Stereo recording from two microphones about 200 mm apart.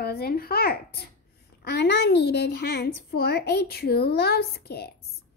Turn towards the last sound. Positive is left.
turn(degrees=55)  # may be behind; listen again after turning